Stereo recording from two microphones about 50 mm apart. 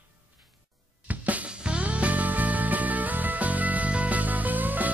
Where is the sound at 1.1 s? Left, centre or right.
Right.